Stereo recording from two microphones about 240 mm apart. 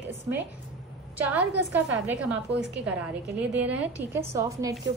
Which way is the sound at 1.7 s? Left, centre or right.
Centre.